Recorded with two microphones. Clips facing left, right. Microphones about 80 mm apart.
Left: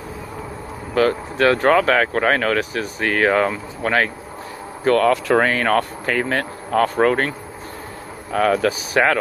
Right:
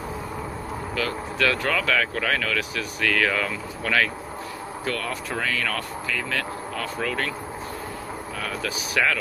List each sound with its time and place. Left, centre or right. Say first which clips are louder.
0.9 s speech: left 11 dB; left
4.8 s speech: left 15 dB; left